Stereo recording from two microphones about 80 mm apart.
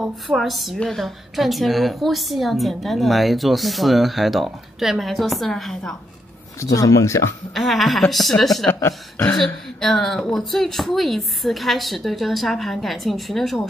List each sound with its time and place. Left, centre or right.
0.0 s a woman's voice: centre
6.6 s speech: left
7.5 s a woman's voice: centre
9.8 s a woman's voice: centre